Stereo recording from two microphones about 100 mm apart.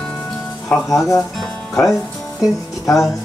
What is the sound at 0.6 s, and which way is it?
Speech, 5° left (ahead or behind).